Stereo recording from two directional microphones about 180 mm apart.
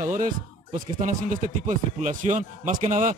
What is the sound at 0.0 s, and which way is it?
Speech, 45° right (ahead or behind).